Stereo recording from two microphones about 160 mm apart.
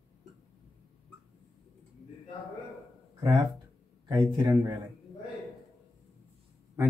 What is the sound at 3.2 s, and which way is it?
Speech, 30° right (ahead or behind).